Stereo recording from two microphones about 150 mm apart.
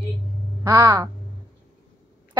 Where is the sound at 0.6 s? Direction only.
25° right (ahead or behind).